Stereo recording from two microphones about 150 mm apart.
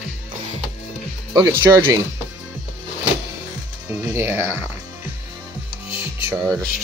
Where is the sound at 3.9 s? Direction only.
15° right (ahead or behind).